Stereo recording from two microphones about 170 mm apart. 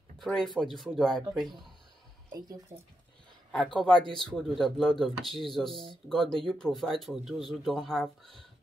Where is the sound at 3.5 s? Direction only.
Centre (ahead or behind).